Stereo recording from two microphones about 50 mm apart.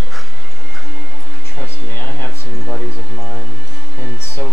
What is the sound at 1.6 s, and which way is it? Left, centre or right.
Music, left.